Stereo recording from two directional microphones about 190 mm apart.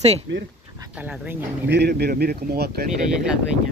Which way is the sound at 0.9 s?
5° right (ahead or behind).